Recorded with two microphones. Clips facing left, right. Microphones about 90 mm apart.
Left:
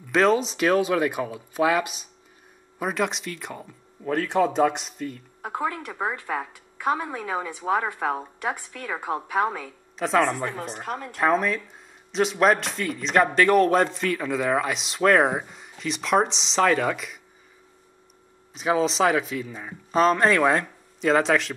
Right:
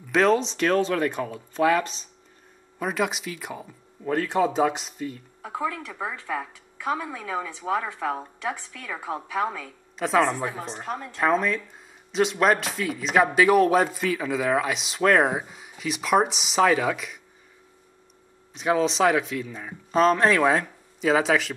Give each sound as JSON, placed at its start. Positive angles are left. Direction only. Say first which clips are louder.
{"t": 0.1, "sound": "speech", "louder": "even", "side_deg": 0}
{"t": 2.8, "sound": "speech", "louder": "even", "side_deg": 0}
{"t": 5.4, "sound": "a woman's voice", "louder": "left 1 dB", "side_deg": 50}
{"t": 9.9, "sound": "speech", "louder": "even", "side_deg": 0}
{"t": 10.8, "sound": "a woman's voice", "louder": "even", "side_deg": 55}
{"t": 11.1, "sound": "speech", "louder": "left 1 dB", "side_deg": 0}
{"t": 18.5, "sound": "speech", "louder": "even", "side_deg": 0}